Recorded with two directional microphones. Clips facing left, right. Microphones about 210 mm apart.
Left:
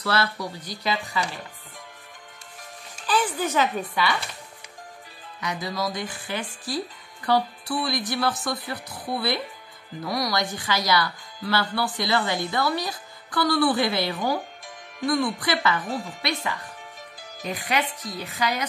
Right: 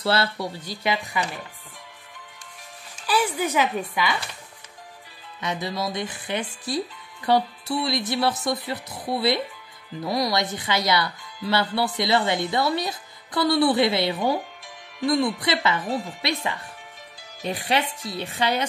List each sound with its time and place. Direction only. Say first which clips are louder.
0.0 s speech: right 2 dB; 30° right (ahead or behind)
0.8 s speech: right 1 dB; 15° right (ahead or behind)
3.1 s speech: right 1 dB; 10° right (ahead or behind)
5.4 s speech: right 1 dB; 25° right (ahead or behind)